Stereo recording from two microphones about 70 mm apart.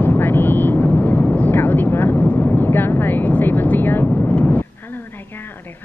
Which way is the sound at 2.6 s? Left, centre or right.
Left.